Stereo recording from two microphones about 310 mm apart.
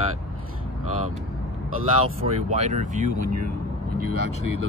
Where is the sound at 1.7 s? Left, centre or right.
Right.